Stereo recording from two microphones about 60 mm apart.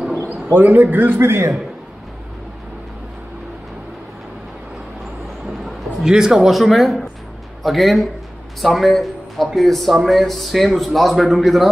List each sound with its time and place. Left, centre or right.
0.5 s a man's voice: right
6.0 s speech: centre